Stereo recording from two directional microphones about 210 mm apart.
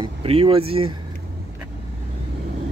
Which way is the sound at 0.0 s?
25° right (ahead or behind).